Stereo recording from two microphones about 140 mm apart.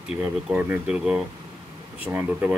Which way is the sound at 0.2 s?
10° right (ahead or behind).